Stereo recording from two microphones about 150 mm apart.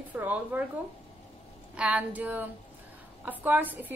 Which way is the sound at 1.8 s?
10° right (ahead or behind).